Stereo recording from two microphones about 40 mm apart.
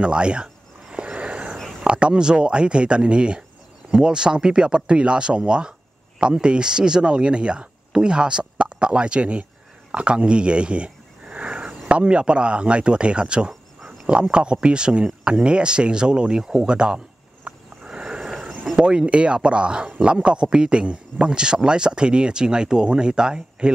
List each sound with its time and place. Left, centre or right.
0.0 s a sound: right
1.0 s a sound: right
1.9 s a man's voice: right
13.5 s insect: centre
14.3 s a man's voice: right
18.8 s a man's voice: right